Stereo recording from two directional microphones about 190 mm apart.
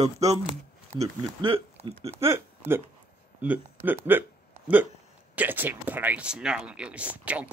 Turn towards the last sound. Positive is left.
turn(degrees=-5)  # may be behind; listen again after turning